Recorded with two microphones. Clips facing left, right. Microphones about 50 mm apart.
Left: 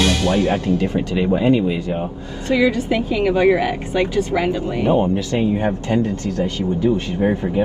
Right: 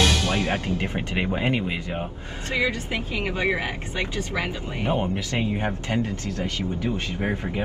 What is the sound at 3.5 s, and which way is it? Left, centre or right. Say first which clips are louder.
Speech: left 10 dB; left.